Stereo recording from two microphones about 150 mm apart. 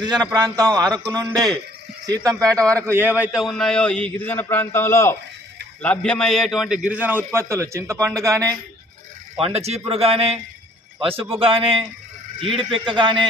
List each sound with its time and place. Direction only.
0.0 s a man's voice: 25° right (ahead or behind)
9.4 s a man's voice: 45° right (ahead or behind)